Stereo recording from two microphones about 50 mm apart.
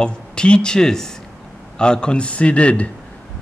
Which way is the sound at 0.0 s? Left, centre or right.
Centre.